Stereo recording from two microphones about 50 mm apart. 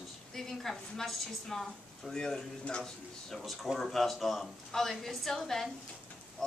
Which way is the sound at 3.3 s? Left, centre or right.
Centre.